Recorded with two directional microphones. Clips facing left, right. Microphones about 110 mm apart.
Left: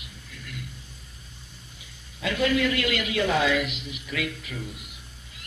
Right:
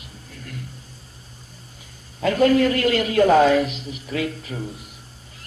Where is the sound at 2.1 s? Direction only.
40° right (ahead or behind).